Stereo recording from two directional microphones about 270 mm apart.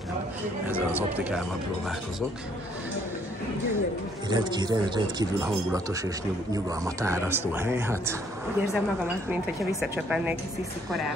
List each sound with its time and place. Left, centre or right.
0.7 s speech: centre
4.3 s speech: centre